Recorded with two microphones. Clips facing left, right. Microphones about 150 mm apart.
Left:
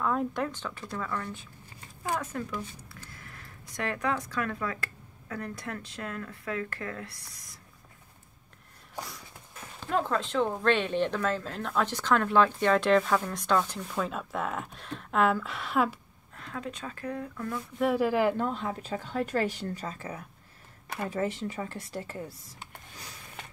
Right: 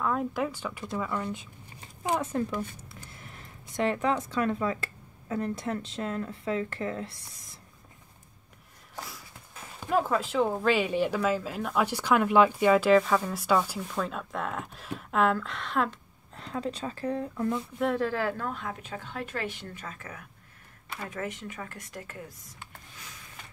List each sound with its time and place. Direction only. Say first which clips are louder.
0.0 s speech: even; centre (ahead or behind); by 7.5 s 25° right (ahead or behind)
9.8 s speech: right 2 dB; 5° right (ahead or behind)
16.3 s speech: right 5 dB; 30° right (ahead or behind)
17.7 s a woman's voice: left 5 dB; 5° left (ahead or behind); by 23.0 s 30° left (ahead or behind)